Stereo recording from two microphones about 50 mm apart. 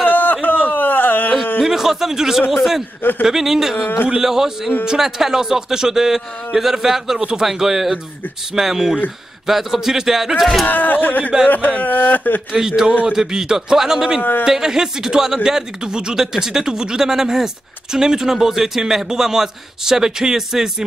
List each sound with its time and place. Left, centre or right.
0.0 s a sound: left
1.6 s a man's voice: centre
10.7 s speech: left
12.5 s speech: centre